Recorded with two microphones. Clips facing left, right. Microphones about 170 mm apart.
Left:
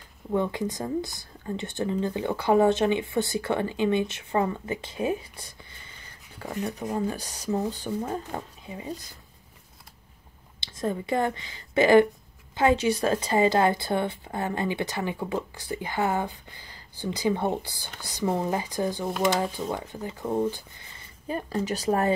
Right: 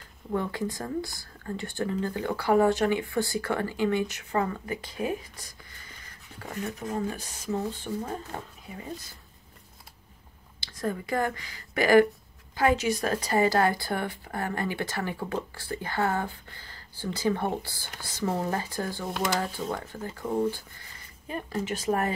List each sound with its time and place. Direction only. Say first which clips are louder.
0.3 s speech: left 3 dB; 20° left (ahead or behind)
7.1 s speech: left 3 dB; 35° left (ahead or behind)
8.6 s speech: left 3 dB; 20° left (ahead or behind)
10.6 s a woman's voice: left 2 dB; 25° left (ahead or behind)
19.0 s speech: left 5 dB; centre (ahead or behind)
19.7 s speech: left 2 dB; 15° left (ahead or behind)
21.3 s speech: left 3 dB; 35° left (ahead or behind)